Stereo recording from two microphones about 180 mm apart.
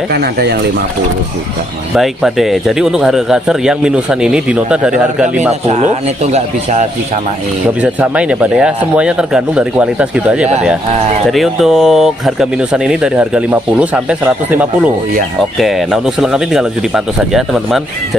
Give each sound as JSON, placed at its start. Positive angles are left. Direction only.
{"t": 0.1, "sound": "speech", "side_deg": -65}
{"t": 2.0, "sound": "speech", "side_deg": 0}
{"t": 5.5, "sound": "a man's voice", "side_deg": -40}
{"t": 7.8, "sound": "a man's voice", "side_deg": -5}